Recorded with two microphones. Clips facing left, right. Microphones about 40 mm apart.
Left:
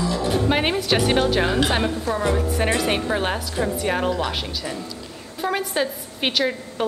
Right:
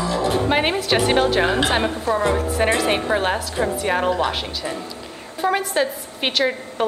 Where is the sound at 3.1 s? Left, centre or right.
Centre.